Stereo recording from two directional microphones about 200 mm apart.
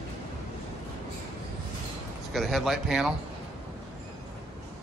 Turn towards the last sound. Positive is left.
turn(degrees=0)  # may be behind; listen again after turning